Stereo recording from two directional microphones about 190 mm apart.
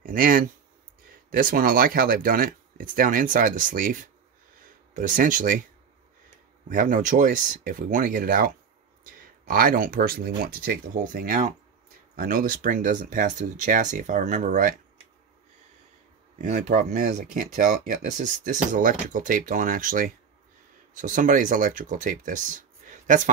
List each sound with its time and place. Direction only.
0.0 s speech: 45° right (ahead or behind)
6.7 s speech: 45° right (ahead or behind)
16.3 s speech: 40° right (ahead or behind)